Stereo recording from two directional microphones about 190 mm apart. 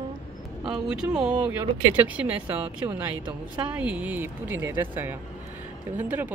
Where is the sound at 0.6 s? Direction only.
5° right (ahead or behind).